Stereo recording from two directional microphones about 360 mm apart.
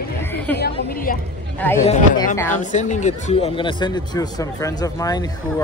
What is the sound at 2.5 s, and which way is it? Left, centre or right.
Speech, centre.